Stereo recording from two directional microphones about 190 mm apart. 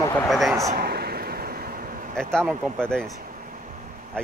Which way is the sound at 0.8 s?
55° right (ahead or behind).